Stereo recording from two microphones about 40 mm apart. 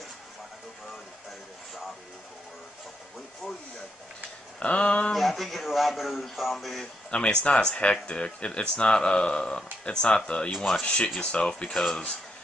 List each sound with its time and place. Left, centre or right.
4.6 s speech: left
5.1 s speech: centre
7.1 s speech: left